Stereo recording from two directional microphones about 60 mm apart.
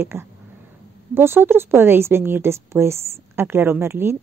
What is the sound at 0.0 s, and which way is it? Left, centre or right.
A woman's voice, right.